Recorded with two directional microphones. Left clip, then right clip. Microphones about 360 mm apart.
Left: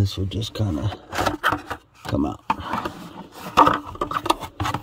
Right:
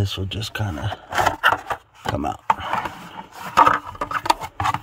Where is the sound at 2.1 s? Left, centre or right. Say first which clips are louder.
Right 3 dB; right.